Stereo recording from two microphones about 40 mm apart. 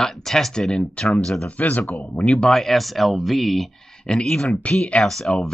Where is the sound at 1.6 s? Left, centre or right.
Left.